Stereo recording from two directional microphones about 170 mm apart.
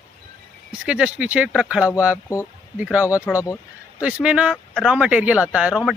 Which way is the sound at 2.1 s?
15° left (ahead or behind).